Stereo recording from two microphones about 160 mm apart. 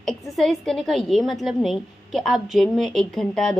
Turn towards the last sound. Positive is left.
turn(degrees=5)  # may be behind; listen again after turning